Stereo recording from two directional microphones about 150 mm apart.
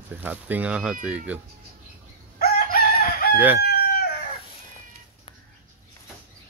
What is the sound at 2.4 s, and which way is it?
Chicken, 80° left.